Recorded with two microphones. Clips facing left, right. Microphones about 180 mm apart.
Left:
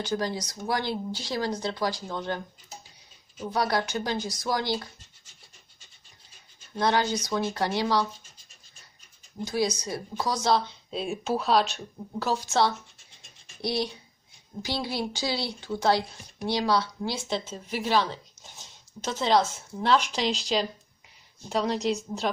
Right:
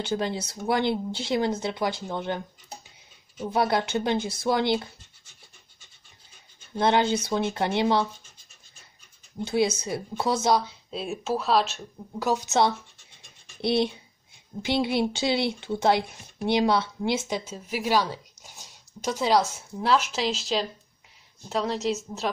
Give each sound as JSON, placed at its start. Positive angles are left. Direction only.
{"t": 0.0, "sound": "speech", "side_deg": -25}
{"t": 3.5, "sound": "speech", "side_deg": -25}
{"t": 6.7, "sound": "speech", "side_deg": -25}
{"t": 9.4, "sound": "speech", "side_deg": -25}
{"t": 10.5, "sound": "speech", "side_deg": -5}
{"t": 12.2, "sound": "speech", "side_deg": -20}
{"t": 17.5, "sound": "a woman's voice", "side_deg": -10}